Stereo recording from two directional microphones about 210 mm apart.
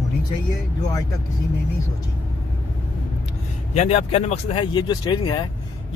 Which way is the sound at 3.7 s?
30° left (ahead or behind).